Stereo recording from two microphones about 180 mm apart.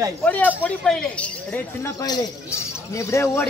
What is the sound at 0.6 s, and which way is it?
Speech, 5° left (ahead or behind).